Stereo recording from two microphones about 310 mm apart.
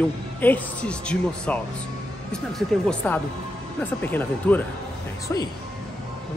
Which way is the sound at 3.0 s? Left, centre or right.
Centre.